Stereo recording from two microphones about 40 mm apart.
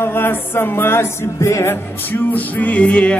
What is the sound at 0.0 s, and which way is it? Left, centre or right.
Music, left.